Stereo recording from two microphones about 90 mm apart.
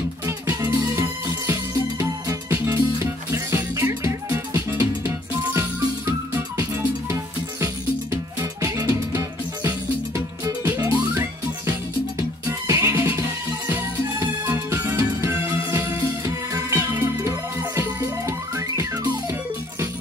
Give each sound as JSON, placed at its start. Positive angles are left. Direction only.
{"t": 0.6, "sound": "music", "side_deg": -35}
{"t": 7.6, "sound": "music", "side_deg": -35}
{"t": 14.5, "sound": "music", "side_deg": -30}